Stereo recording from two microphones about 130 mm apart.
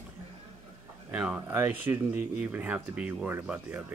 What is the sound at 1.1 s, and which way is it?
Speech, 10° right (ahead or behind).